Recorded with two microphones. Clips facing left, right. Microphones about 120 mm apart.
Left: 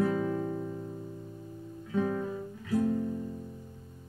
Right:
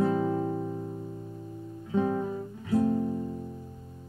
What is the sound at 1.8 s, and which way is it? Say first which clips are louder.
Guitar: right 3 dB; 25° right (ahead or behind).